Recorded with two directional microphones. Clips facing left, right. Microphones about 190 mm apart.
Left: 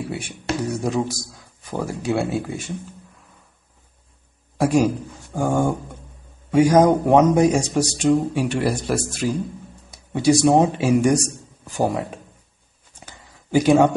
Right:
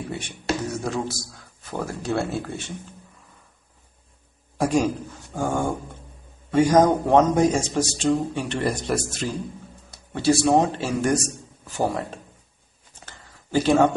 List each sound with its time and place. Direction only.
0.0 s a man's voice: 5° left (ahead or behind)
4.6 s a man's voice: 5° left (ahead or behind)
13.0 s a sound: 10° left (ahead or behind)